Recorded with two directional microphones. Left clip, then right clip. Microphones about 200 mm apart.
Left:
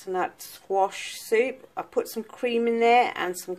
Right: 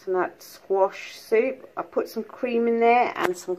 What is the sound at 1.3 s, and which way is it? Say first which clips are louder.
Speech: right 2 dB; 20° left (ahead or behind).